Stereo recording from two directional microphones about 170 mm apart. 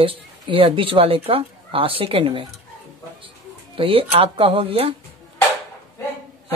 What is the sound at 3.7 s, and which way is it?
Speech, 35° right (ahead or behind).